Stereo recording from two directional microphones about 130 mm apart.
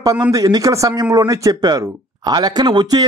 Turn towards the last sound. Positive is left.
turn(degrees=-35)  # may be behind; listen again after turning